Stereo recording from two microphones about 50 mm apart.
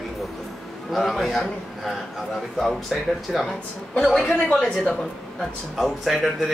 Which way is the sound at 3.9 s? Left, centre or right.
Centre.